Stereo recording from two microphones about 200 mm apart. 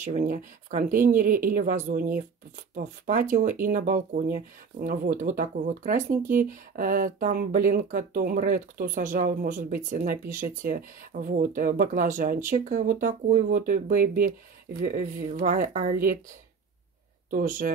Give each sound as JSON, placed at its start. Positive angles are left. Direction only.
{"t": 0.0, "sound": "speech", "side_deg": -40}
{"t": 17.3, "sound": "speech", "side_deg": -45}